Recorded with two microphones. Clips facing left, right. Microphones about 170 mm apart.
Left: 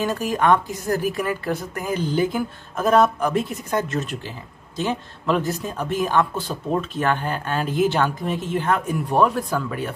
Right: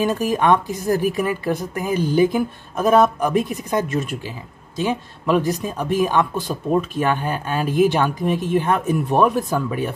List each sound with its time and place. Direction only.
0.0 s speech: 20° right (ahead or behind)